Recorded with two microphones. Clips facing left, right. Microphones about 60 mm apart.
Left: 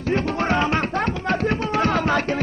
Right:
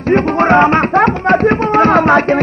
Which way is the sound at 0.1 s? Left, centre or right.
Right.